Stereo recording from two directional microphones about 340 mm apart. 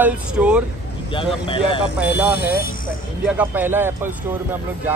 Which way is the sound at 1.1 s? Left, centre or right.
Centre.